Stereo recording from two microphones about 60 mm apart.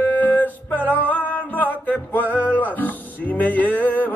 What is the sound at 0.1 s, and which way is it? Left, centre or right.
Music, left.